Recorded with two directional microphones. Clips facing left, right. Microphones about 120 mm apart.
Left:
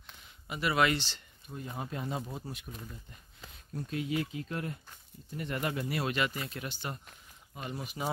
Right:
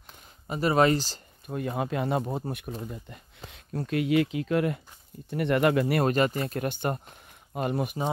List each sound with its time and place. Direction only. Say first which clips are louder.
0.5 s speech: right 7 dB; 40° right (ahead or behind)
1.5 s speech: right 10 dB; 75° right (ahead or behind); by 2.7 s 55° right (ahead or behind)
3.4 s speech: right 7 dB; 80° right
5.3 s speech: right 12 dB; 70° right (ahead or behind)
6.0 s speech: right 8 dB; 45° right (ahead or behind)